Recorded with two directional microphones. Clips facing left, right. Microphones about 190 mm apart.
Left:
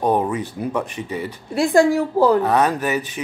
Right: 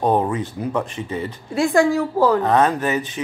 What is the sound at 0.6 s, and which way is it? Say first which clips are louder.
Speech: even; 15° left (ahead or behind).